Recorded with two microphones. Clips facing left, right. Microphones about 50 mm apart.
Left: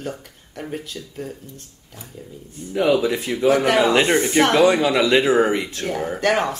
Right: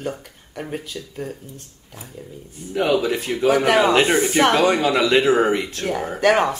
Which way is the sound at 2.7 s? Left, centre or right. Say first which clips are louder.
Left 1 dB; right.